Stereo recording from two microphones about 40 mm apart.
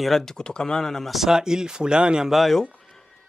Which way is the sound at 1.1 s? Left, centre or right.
Centre.